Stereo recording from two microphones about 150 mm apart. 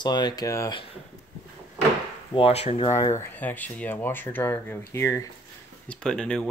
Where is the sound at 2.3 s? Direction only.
40° left (ahead or behind).